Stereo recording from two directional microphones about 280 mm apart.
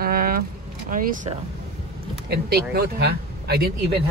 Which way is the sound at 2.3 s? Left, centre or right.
Right.